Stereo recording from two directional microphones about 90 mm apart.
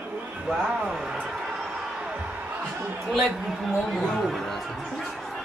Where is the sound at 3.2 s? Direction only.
10° right (ahead or behind).